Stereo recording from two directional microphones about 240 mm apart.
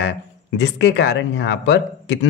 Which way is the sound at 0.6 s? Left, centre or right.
Left.